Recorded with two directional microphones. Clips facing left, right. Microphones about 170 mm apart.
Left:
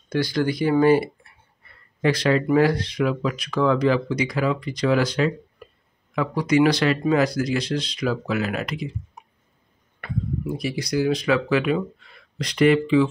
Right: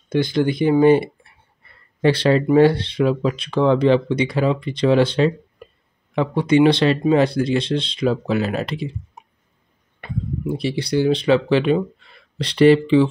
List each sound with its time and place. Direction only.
0.1 s speech: 20° right (ahead or behind)